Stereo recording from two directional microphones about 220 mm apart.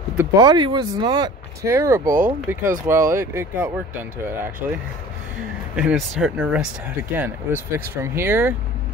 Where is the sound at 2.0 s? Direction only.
40° right (ahead or behind).